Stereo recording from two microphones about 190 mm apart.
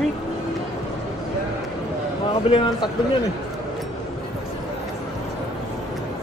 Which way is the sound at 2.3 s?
25° left (ahead or behind).